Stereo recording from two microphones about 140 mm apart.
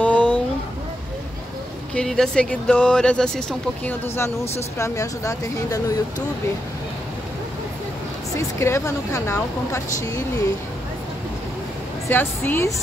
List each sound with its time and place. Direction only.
0.0 s a sound: 10° left (ahead or behind)
2.0 s speech: 5° left (ahead or behind); by 5.9 s 25° left (ahead or behind)
8.4 s a woman's voice: 20° left (ahead or behind)
12.1 s speech: 15° left (ahead or behind)